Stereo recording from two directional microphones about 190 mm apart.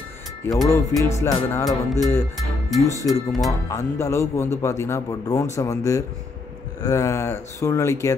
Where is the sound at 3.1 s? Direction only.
Centre (ahead or behind).